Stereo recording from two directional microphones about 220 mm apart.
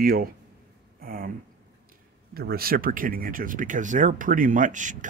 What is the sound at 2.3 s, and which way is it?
Speech, 45° right (ahead or behind).